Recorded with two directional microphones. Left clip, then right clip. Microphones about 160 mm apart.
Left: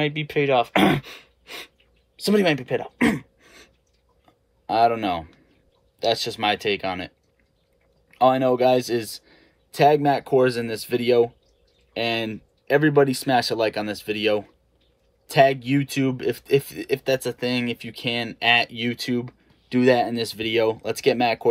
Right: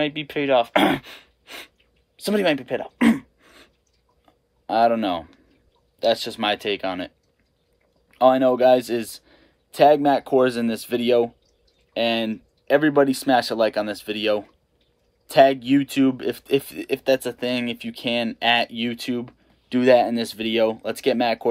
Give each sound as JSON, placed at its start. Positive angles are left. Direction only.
{"t": 0.0, "sound": "speech", "side_deg": -15}
{"t": 4.3, "sound": "a sound", "side_deg": -15}
{"t": 5.9, "sound": "speech", "side_deg": -15}
{"t": 8.1, "sound": "speech", "side_deg": -15}